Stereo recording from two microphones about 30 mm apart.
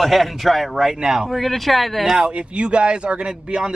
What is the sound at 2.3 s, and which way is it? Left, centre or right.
Speech, right.